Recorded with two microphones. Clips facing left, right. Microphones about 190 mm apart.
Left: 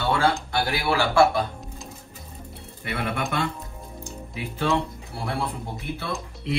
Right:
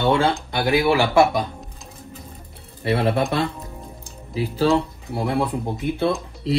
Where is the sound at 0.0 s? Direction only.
20° right (ahead or behind).